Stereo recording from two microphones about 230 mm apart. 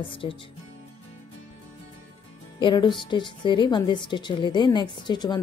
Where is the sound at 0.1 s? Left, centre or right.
Left.